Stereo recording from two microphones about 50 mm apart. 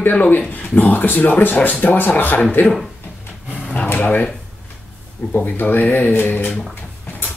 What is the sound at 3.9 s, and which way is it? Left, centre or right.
Drawer open or close, left.